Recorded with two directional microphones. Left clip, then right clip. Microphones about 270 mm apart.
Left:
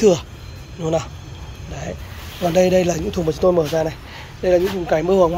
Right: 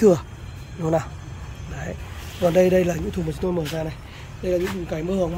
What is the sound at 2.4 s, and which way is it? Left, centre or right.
Speech, centre.